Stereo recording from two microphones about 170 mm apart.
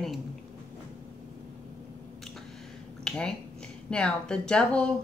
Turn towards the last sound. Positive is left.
turn(degrees=5)  # may be behind; listen again after turning